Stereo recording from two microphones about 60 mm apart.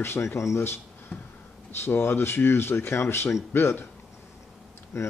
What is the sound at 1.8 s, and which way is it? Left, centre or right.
Speech, left.